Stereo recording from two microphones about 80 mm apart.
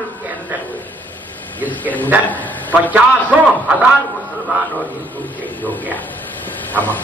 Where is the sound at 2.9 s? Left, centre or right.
Centre.